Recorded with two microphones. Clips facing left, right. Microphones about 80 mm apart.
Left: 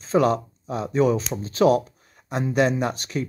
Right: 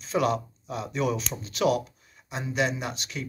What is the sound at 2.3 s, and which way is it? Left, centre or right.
Speech, left.